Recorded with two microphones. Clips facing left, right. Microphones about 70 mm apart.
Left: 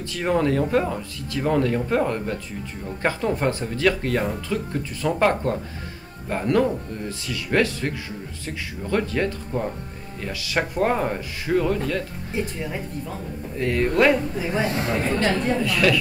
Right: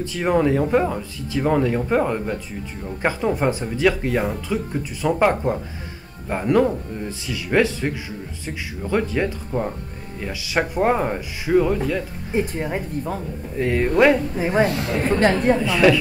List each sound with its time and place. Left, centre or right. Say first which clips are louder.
0.0 s speech: right 3 dB; centre
12.4 s a woman's voice: right 5 dB; right
13.6 s speech: right 3 dB; centre
14.4 s a woman's voice: right 6 dB; right
14.7 s speech: even; left
15.6 s speech: right 4 dB; centre